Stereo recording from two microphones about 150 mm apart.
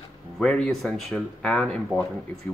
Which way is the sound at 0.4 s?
5° left (ahead or behind).